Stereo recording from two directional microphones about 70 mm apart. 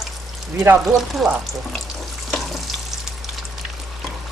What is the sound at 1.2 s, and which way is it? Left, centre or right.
Speech, centre.